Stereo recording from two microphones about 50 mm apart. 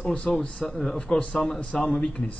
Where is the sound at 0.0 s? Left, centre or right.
Left.